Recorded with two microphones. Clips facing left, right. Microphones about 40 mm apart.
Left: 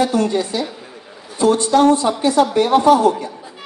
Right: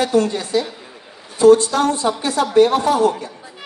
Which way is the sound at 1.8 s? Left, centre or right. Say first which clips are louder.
Left 5 dB; left.